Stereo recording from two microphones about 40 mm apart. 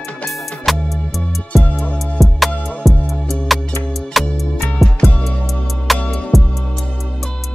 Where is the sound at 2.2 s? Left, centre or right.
Centre.